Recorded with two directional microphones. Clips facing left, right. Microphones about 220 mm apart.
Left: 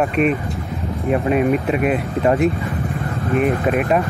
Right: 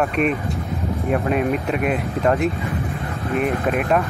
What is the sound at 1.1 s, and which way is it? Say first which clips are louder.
Speech: left 4 dB; centre (ahead or behind).